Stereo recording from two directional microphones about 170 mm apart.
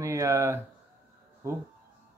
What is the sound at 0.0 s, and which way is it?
Speech, 15° right (ahead or behind).